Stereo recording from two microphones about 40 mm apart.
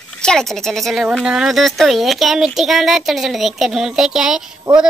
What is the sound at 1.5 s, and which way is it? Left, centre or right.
Speech, centre.